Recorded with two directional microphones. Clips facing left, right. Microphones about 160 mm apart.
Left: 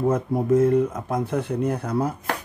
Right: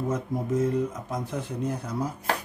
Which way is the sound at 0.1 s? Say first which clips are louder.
Left 7 dB; 60° left (ahead or behind).